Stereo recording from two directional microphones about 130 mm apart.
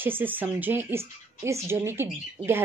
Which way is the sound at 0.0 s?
15° right (ahead or behind).